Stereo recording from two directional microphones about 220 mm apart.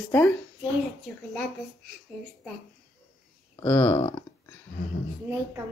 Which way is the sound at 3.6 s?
15° left (ahead or behind).